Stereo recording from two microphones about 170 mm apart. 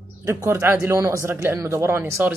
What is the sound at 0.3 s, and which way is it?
Speech, 15° right (ahead or behind).